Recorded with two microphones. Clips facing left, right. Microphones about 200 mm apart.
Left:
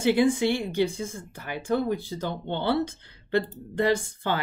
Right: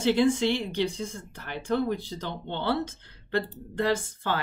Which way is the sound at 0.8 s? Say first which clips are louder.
Left 1 dB; 50° left (ahead or behind).